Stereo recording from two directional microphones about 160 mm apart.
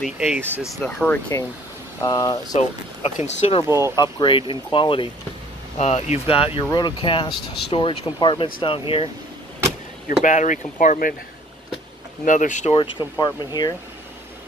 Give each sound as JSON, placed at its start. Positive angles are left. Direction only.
{"t": 0.0, "sound": "speech", "side_deg": 0}
{"t": 2.0, "sound": "speech", "side_deg": 25}
{"t": 2.5, "sound": "speech", "side_deg": 45}
{"t": 3.6, "sound": "speech", "side_deg": -20}
{"t": 3.9, "sound": "speech", "side_deg": 30}
{"t": 5.8, "sound": "speech", "side_deg": 40}
{"t": 10.2, "sound": "speech", "side_deg": 50}
{"t": 12.3, "sound": "speech", "side_deg": 50}
{"t": 12.7, "sound": "speech", "side_deg": 30}